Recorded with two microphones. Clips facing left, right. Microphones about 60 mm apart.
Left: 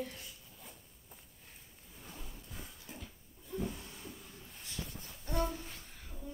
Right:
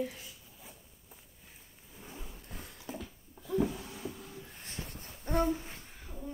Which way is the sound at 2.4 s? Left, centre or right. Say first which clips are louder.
Right 5 dB; right.